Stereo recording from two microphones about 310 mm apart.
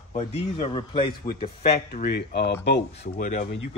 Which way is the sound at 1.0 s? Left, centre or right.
Left.